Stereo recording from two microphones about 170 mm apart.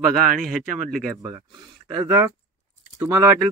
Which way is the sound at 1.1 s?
20° right (ahead or behind).